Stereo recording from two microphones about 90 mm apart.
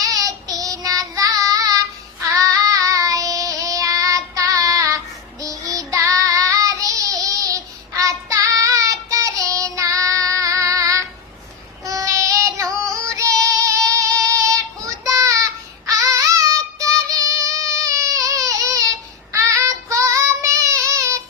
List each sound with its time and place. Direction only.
0.0 s child singing: 40° right (ahead or behind)
17.1 s baby cry: 40° right (ahead or behind)
19.3 s child singing: 35° right (ahead or behind)